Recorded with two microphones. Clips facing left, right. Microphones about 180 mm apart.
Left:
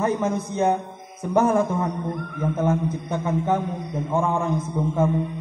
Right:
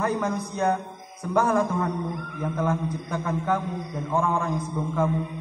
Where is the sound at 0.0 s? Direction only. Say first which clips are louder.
Left 3 dB; 25° left (ahead or behind).